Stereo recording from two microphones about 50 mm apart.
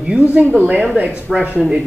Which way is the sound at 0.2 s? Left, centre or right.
Right.